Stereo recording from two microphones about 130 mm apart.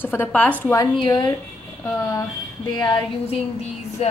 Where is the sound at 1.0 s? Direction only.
35° left (ahead or behind).